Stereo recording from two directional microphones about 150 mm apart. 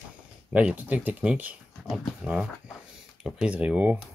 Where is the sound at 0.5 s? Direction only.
10° right (ahead or behind).